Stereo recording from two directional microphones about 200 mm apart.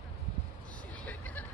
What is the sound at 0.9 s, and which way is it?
Hubbub, 5° left (ahead or behind).